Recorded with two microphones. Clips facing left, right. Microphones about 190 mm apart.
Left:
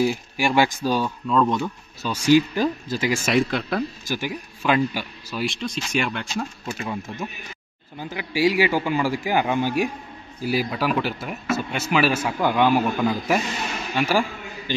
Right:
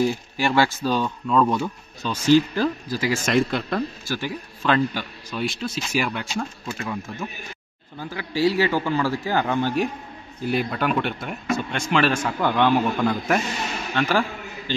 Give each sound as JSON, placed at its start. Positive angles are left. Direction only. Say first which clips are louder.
{"t": 0.0, "sound": "a man's voice", "louder": "even", "side_deg": 10}
{"t": 1.2, "sound": "speech", "louder": "right 1 dB", "side_deg": -5}
{"t": 2.0, "sound": "a man's voice", "louder": "even", "side_deg": 15}
{"t": 3.1, "sound": "a man's voice", "louder": "even", "side_deg": 5}
{"t": 4.1, "sound": "a man's voice", "louder": "even", "side_deg": 10}
{"t": 6.8, "sound": "a man's voice", "louder": "even", "side_deg": 20}